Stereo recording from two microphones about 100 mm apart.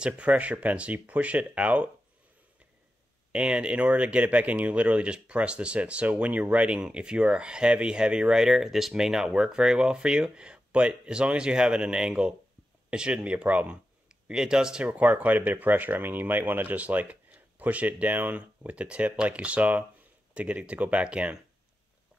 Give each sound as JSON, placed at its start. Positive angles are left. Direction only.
{"t": 0.0, "sound": "speech", "side_deg": -15}
{"t": 3.3, "sound": "speech", "side_deg": -10}